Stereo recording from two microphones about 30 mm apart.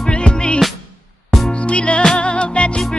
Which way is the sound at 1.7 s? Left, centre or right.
Left.